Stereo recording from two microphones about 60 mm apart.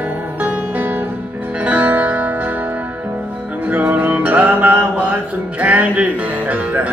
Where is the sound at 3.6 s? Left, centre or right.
Right.